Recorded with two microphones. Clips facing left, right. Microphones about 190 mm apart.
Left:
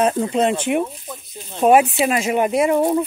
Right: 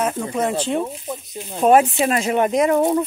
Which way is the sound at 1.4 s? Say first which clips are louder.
Left 2 dB; 5° right (ahead or behind).